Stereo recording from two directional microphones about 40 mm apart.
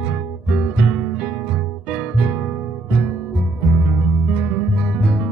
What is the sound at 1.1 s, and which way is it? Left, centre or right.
Music, right.